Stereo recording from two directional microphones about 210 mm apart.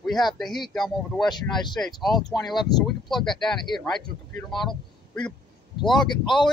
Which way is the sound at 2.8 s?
Centre (ahead or behind).